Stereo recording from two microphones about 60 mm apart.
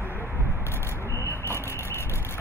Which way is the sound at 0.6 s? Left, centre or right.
Left.